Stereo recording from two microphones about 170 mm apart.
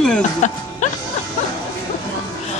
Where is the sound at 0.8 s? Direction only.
45° left (ahead or behind).